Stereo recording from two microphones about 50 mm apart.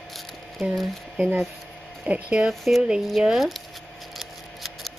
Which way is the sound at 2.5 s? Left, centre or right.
Centre.